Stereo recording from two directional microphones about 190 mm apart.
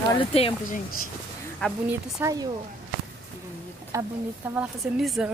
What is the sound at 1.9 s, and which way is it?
Speech, 15° right (ahead or behind).